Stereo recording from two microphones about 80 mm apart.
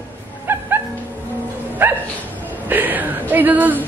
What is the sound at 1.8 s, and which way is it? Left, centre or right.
Speech, right.